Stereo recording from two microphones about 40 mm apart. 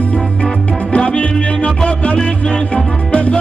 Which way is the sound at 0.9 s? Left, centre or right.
Left.